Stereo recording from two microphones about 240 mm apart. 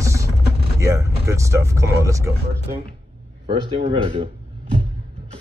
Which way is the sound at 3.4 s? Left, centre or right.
Right.